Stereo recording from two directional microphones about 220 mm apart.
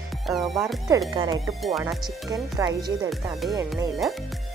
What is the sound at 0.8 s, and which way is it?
Speech, 20° right (ahead or behind).